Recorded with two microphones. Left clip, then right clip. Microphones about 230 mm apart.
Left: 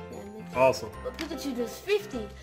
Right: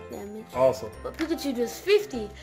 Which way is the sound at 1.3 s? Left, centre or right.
Right.